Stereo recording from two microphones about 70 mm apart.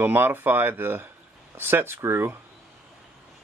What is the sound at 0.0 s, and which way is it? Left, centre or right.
Speech, right.